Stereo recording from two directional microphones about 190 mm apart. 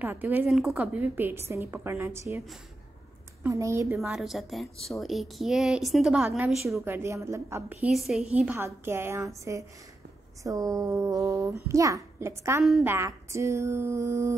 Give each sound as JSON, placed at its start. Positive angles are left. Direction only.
{"t": 0.0, "sound": "a woman's voice", "side_deg": -10}
{"t": 3.4, "sound": "a woman's voice", "side_deg": -15}
{"t": 4.0, "sound": "a woman's voice", "side_deg": 0}